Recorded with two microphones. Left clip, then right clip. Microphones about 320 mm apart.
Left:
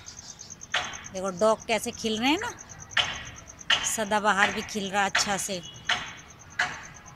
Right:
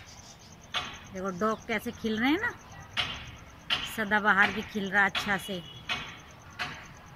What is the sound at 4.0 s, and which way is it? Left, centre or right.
Speech, centre.